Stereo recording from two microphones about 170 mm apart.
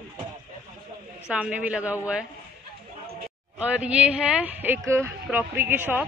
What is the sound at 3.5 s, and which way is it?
A man's voice, 10° right (ahead or behind).